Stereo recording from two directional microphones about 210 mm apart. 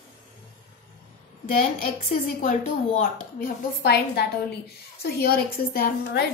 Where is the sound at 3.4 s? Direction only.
50° left (ahead or behind).